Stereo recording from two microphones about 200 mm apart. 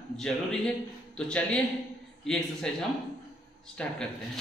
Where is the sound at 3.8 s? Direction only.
5° left (ahead or behind).